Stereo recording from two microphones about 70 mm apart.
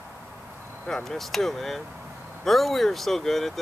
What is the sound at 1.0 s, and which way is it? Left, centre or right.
Speech, centre.